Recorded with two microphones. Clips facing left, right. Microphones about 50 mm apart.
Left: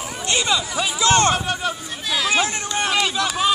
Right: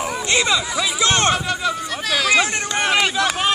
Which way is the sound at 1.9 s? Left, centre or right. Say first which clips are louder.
Right 3 dB; right.